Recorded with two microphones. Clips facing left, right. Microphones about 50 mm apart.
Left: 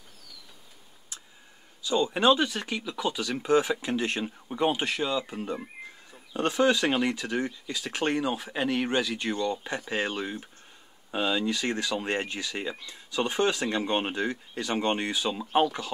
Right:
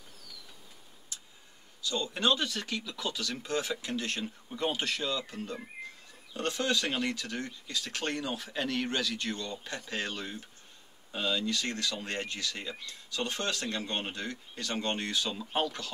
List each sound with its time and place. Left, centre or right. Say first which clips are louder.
1.8 s speech: left 7 dB; centre